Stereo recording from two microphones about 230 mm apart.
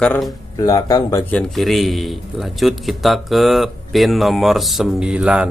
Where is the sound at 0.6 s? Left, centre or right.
Centre.